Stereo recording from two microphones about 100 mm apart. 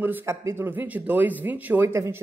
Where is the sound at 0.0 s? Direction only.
20° right (ahead or behind).